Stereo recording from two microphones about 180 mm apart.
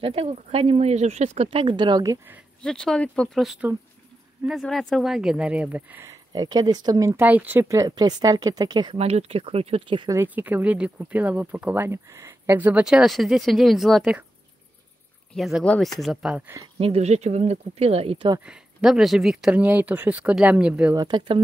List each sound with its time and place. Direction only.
0.0 s speech: 35° right (ahead or behind)
2.6 s speech: 5° left (ahead or behind); by 8.9 s 25° right (ahead or behind)
8.9 s speech: 35° right (ahead or behind)
10.1 s speech: 10° right (ahead or behind)
15.3 s speech: centre (ahead or behind)
16.5 s speech: 30° right (ahead or behind)
18.4 s speech: 5° right (ahead or behind)
20.9 s speech: 25° right (ahead or behind)